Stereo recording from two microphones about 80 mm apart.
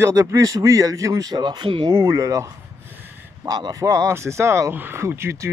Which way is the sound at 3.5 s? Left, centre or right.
Right.